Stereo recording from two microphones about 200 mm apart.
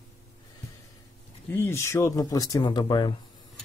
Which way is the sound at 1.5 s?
10° left (ahead or behind).